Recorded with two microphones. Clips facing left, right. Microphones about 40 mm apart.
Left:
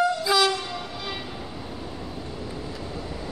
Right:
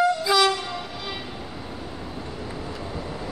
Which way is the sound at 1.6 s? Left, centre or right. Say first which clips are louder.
Even; centre.